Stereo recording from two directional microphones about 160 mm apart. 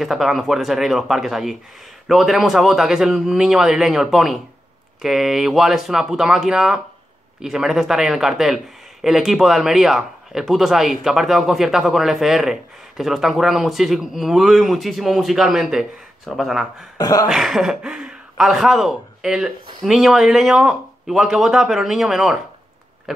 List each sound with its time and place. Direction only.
0.0 s speech: centre (ahead or behind)
17.0 s a sound: 25° left (ahead or behind)
17.3 s speech: centre (ahead or behind)
23.1 s pig: centre (ahead or behind)